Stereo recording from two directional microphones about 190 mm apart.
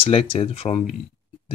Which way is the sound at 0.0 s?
30° left (ahead or behind).